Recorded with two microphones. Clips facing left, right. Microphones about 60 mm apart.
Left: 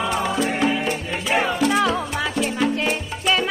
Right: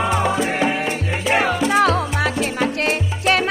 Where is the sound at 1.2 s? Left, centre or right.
Right.